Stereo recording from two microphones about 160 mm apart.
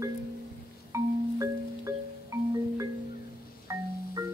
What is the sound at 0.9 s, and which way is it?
Marimba, 20° right (ahead or behind).